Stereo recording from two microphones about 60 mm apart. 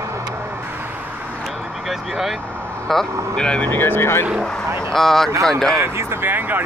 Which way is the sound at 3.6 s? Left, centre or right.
Left.